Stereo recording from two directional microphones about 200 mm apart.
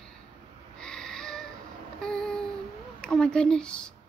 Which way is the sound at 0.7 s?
5° left (ahead or behind).